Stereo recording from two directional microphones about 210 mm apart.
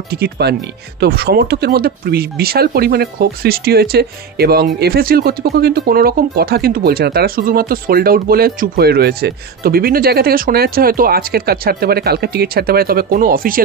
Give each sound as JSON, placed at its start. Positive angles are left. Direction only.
{"t": 0.1, "sound": "speech", "side_deg": -50}